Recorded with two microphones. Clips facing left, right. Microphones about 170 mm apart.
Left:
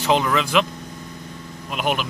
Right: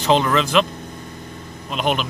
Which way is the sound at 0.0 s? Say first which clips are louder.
Right 2 dB; 10° left (ahead or behind).